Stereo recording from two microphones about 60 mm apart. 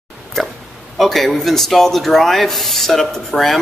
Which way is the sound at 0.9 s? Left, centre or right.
Centre.